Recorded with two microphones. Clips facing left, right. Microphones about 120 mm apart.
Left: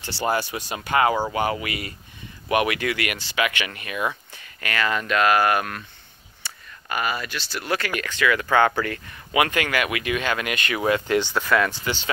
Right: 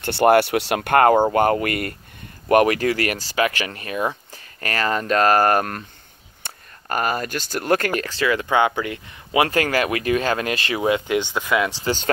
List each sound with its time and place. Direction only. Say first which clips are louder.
0.0 s speech: right 9 dB; 60° right (ahead or behind)
2.4 s speech: right 6 dB; 45° right (ahead or behind); by 9.4 s 20° right (ahead or behind)
9.4 s speech: right 3 dB; 35° right (ahead or behind)
10.8 s speech: even; 15° right (ahead or behind)